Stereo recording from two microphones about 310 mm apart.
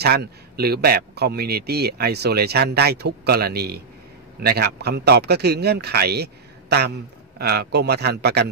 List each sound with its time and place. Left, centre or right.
0.0 s speech: right